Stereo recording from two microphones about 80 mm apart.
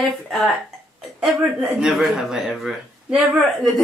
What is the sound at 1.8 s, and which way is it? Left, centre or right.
Speech, centre.